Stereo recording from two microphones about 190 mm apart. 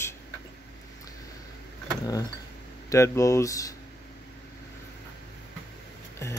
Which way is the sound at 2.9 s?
15° left (ahead or behind).